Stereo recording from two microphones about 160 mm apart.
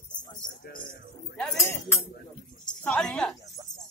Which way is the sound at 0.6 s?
60° left (ahead or behind).